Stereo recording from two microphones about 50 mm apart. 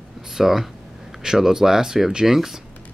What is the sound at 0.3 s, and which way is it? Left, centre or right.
Speech, centre.